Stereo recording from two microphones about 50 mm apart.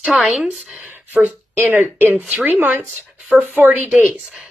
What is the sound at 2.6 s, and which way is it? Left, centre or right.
A woman's voice, right.